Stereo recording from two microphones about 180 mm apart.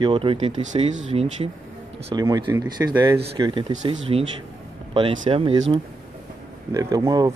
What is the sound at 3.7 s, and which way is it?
Speech, 35° right (ahead or behind).